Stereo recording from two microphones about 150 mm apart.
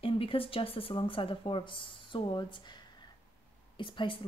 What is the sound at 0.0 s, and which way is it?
Speech, 35° left (ahead or behind).